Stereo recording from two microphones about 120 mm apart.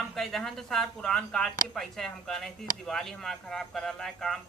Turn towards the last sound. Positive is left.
turn(degrees=5)  # may be behind; listen again after turning